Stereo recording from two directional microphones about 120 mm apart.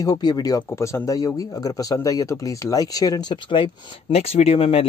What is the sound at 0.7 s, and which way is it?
Speech, 20° left (ahead or behind).